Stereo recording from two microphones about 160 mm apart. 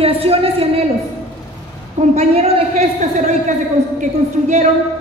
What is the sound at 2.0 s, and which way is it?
A woman's voice, 40° right (ahead or behind).